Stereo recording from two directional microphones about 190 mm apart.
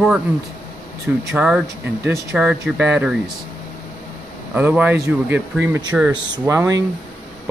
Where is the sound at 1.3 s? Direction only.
Centre (ahead or behind).